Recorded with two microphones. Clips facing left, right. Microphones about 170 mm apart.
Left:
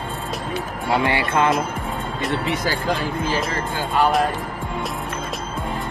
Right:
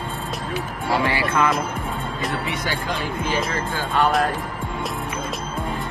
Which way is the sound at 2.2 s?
Centre (ahead or behind).